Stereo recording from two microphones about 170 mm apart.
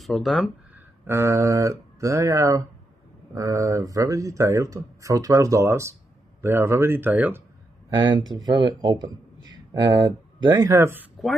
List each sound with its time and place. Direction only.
0.0 s speech: centre (ahead or behind)
0.7 s speech: 15° right (ahead or behind)
7.9 s speech: 25° right (ahead or behind)